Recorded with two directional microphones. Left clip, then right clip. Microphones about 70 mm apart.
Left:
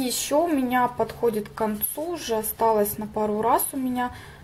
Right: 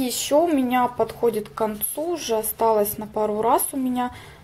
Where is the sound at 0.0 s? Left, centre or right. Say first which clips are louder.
Right 3 dB; centre.